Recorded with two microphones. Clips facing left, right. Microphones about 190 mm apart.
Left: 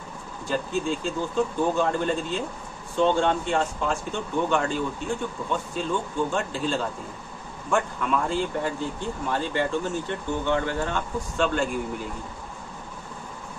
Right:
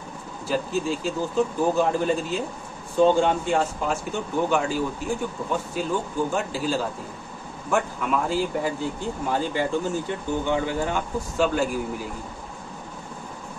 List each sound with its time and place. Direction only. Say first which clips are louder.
0.5 s speech: right 1 dB; 5° right (ahead or behind)